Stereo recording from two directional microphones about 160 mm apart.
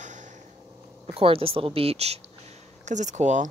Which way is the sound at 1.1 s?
35° right (ahead or behind).